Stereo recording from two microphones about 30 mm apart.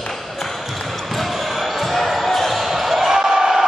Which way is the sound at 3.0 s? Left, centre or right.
Centre.